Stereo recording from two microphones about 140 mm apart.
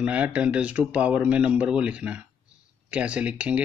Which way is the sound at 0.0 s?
10° right (ahead or behind).